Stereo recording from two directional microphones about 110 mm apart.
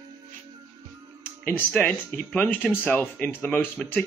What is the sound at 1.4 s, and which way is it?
Speech, 15° left (ahead or behind).